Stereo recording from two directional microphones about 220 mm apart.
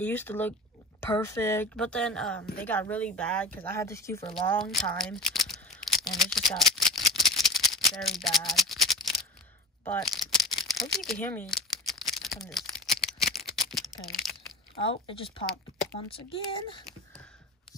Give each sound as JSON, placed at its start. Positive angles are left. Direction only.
{"t": 0.0, "sound": "speech", "side_deg": 10}
{"t": 4.6, "sound": "speech", "side_deg": 0}
{"t": 6.6, "sound": "rattle", "side_deg": 0}
{"t": 8.0, "sound": "speech", "side_deg": 0}
{"t": 10.0, "sound": "crumpling", "side_deg": 0}
{"t": 14.2, "sound": "crunch", "side_deg": 0}
{"t": 14.8, "sound": "a child's voice", "side_deg": 25}